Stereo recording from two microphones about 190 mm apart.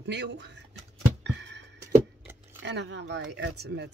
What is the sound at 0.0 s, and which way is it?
Speech, 65° right (ahead or behind).